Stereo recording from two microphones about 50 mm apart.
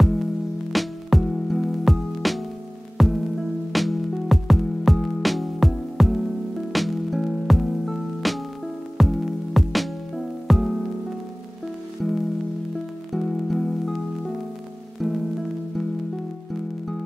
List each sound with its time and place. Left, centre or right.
0.0 s music: centre
13.1 s music: centre